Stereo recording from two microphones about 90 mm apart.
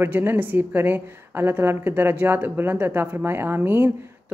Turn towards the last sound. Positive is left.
turn(degrees=-25)  # may be behind; listen again after turning